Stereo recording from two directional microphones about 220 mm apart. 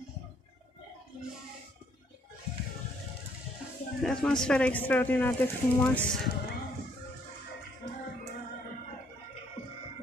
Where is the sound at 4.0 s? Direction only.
5° left (ahead or behind).